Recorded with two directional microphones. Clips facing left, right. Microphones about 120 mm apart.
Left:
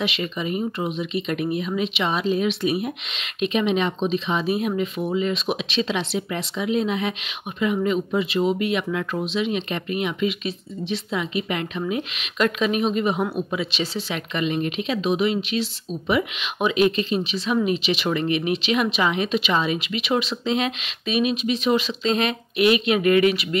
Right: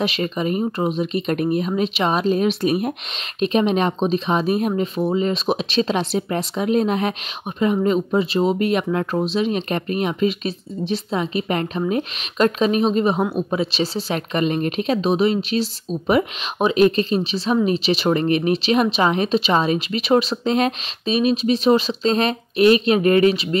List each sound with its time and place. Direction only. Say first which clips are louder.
0.0 s speech: right 4 dB; 40° right (ahead or behind)